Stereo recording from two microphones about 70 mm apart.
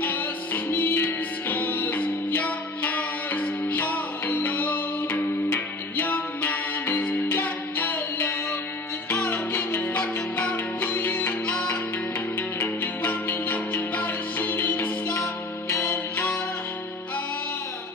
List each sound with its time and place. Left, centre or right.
0.0 s music: left
12.4 s music: left